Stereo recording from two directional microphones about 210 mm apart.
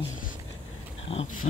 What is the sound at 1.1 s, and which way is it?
Speech, 30° left (ahead or behind).